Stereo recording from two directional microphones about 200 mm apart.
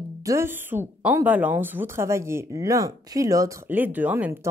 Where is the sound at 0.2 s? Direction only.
15° right (ahead or behind).